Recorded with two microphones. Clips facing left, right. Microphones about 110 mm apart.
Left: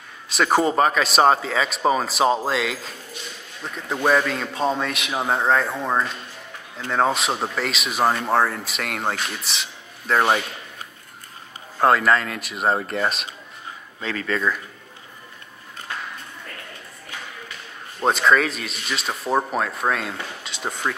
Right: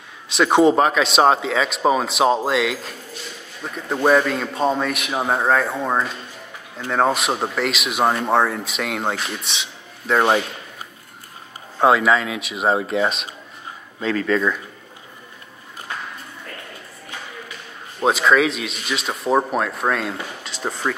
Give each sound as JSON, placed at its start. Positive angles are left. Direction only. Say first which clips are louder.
{"t": 0.3, "sound": "speech", "louder": "right 5 dB", "side_deg": 0}
{"t": 11.8, "sound": "speech", "louder": "right 2 dB", "side_deg": 0}
{"t": 18.0, "sound": "speech", "louder": "right 2 dB", "side_deg": 0}